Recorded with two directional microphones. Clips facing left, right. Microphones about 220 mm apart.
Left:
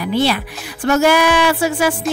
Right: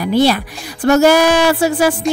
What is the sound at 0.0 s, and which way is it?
A woman's voice, 40° right (ahead or behind).